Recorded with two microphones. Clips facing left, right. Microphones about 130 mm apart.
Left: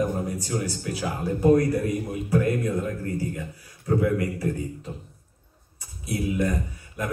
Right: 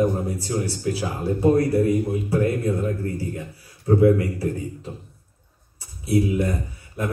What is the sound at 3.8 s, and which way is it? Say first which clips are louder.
Speech: right 6 dB; 30° right (ahead or behind).